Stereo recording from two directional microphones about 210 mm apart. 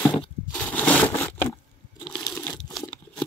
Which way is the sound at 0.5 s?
10° left (ahead or behind).